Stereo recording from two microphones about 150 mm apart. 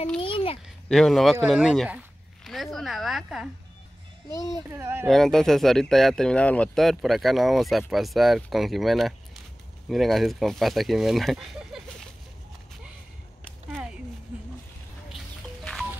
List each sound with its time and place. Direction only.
0.2 s a sound: 35° left (ahead or behind)
0.8 s speech: 5° left (ahead or behind)
4.3 s a child's voice: 20° left (ahead or behind)
4.6 s speech: 15° right (ahead or behind)
5.0 s speech: centre (ahead or behind)
13.4 s a sound: 5° left (ahead or behind)